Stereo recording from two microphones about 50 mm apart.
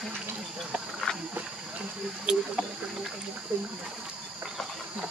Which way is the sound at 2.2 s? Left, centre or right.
Centre.